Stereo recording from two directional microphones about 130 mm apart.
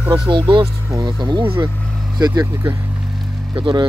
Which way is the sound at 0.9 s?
25° right (ahead or behind).